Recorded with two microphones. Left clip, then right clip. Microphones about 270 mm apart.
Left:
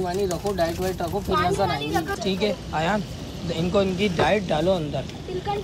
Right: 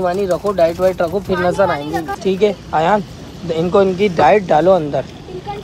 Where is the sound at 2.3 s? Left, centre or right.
Right.